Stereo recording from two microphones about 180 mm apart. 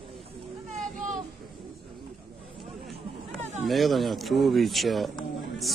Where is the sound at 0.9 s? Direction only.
45° right (ahead or behind).